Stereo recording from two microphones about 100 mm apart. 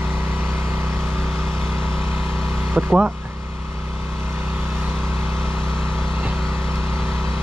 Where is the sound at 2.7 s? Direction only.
10° right (ahead or behind).